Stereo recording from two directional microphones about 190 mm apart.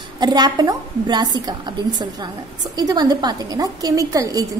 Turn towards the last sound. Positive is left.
turn(degrees=-20)  # may be behind; listen again after turning